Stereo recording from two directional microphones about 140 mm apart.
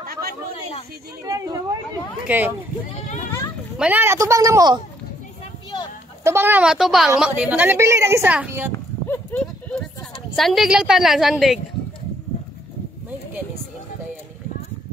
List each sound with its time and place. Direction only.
0.0 s a sound: 90° right
1.2 s speech: 25° right (ahead or behind)
2.2 s a woman's voice: 15° right (ahead or behind)
3.7 s speech: 5° right (ahead or behind)
4.0 s speech: 20° right (ahead or behind)
6.2 s a woman's voice: 15° right (ahead or behind)
8.7 s clip-clop: 15° left (ahead or behind)
10.3 s a woman's voice: centre (ahead or behind)